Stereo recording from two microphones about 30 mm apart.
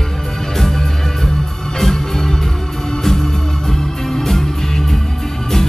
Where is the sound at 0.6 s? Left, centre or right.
Centre.